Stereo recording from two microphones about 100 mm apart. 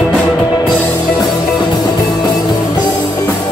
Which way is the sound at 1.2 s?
40° left (ahead or behind).